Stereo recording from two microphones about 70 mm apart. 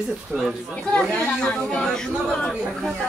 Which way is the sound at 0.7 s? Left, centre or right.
Centre.